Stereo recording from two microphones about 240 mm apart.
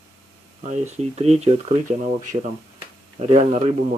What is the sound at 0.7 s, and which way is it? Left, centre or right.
Speech, right.